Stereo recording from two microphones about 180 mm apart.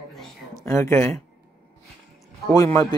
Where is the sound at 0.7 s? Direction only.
15° left (ahead or behind).